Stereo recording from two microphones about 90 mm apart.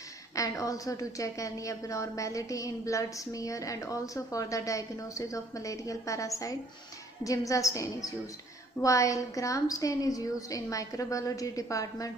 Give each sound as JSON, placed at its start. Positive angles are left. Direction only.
{"t": 0.4, "sound": "a woman's voice", "side_deg": 40}